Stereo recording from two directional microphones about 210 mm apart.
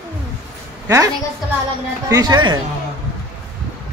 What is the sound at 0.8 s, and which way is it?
A woman's voice, 15° right (ahead or behind).